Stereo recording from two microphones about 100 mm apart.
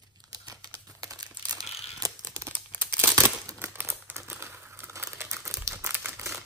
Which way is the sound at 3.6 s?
25° right (ahead or behind).